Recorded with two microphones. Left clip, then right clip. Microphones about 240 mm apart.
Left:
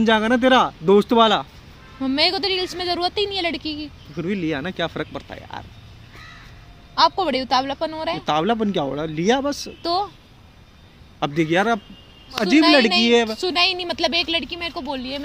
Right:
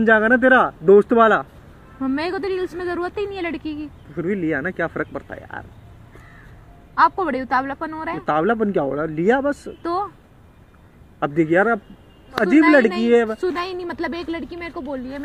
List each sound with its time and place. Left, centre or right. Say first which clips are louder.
0.0 s speech: right 3 dB; left
2.0 s speech: left 4 dB; centre
3.3 s a woman's voice: left 3 dB; centre
4.1 s speech: right 3 dB; left
7.0 s speech: right 1 dB; centre
8.3 s speech: right 2 dB; left
9.6 s speech: left 1 dB; centre
11.1 s speech: right 2 dB; left
12.3 s speech: right 1 dB; centre
13.1 s speech: right 1 dB; left
13.4 s speech: left 4 dB; centre